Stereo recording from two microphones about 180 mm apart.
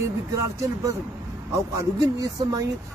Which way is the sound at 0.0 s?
15° right (ahead or behind).